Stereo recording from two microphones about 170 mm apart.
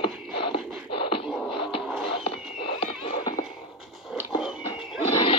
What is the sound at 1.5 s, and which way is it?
Music, 30° left (ahead or behind).